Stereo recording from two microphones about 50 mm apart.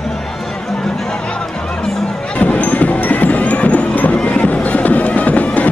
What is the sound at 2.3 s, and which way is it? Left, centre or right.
Music, left.